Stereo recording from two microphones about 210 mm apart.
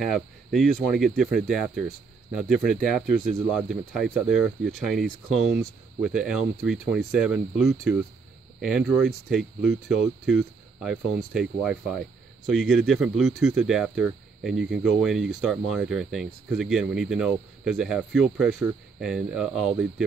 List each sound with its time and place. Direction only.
0.0 s speech: centre (ahead or behind)